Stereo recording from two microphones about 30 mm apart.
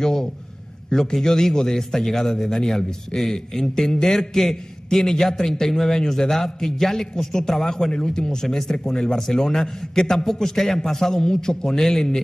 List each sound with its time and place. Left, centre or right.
0.0 s a sound: centre
0.8 s a man's voice: centre
7.9 s a man's voice: left